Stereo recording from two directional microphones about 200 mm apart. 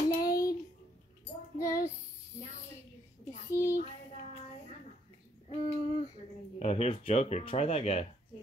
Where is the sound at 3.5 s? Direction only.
15° left (ahead or behind).